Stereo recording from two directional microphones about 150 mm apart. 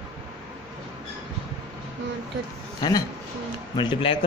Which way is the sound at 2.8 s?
30° left (ahead or behind).